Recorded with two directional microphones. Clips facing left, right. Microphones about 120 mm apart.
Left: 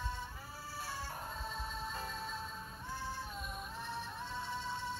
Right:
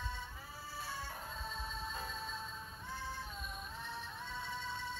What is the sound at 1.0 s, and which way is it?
Music, 35° left (ahead or behind).